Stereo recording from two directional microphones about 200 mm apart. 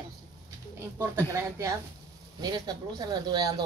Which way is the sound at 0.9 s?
15° right (ahead or behind).